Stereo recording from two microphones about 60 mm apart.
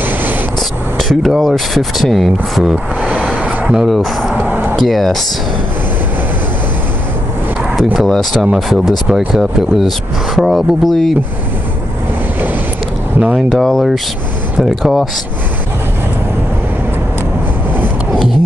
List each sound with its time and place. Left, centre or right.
0.9 s speech: centre
3.2 s a sound: right
3.8 s speech: centre
4.5 s a sound: right
4.7 s speech: centre
8.1 s speech: centre
13.5 s speech: centre